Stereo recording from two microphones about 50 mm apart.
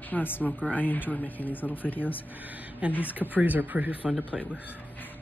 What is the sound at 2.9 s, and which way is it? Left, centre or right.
Speech, left.